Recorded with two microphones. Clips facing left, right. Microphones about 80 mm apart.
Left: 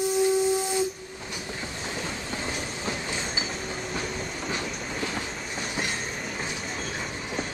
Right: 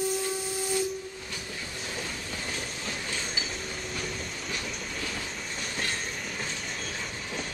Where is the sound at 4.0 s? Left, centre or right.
Left.